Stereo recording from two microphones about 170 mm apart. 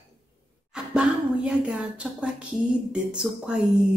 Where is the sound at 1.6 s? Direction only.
5° right (ahead or behind).